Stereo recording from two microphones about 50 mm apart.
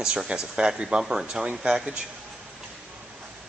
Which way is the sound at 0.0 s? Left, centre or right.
Centre.